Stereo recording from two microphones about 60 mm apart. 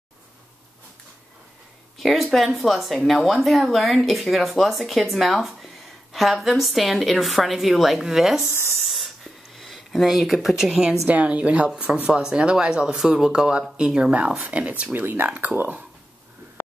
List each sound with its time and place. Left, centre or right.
2.0 s a woman's voice: centre
8.5 s speech: right
8.8 s a sound: centre
10.6 s speech: centre
11.1 s speech: right